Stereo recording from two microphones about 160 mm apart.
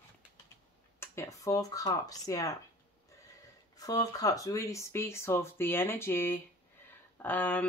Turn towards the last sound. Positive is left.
turn(degrees=10)  # may be behind; listen again after turning